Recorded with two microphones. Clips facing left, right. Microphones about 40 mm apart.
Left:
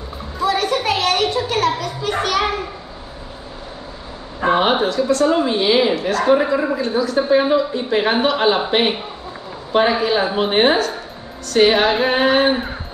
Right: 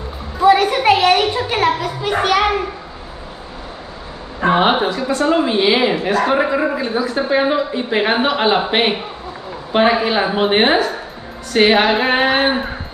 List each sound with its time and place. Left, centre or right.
0.4 s a woman's voice: right
4.4 s a woman's voice: centre